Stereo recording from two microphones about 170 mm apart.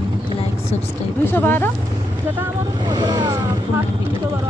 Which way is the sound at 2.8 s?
25° right (ahead or behind).